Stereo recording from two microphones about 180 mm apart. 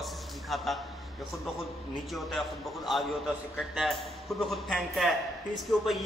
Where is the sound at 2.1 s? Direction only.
Centre (ahead or behind).